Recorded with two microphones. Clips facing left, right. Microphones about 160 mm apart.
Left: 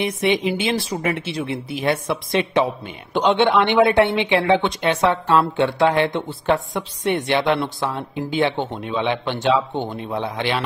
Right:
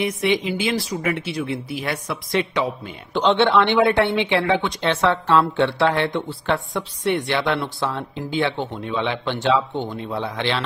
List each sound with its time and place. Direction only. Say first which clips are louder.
0.0 s a woman's voice: left 1 dB; 20° left (ahead or behind)